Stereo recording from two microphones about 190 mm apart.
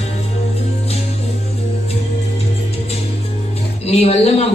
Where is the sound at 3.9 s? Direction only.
35° left (ahead or behind).